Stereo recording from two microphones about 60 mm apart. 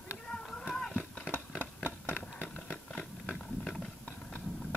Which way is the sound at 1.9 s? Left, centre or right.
Left.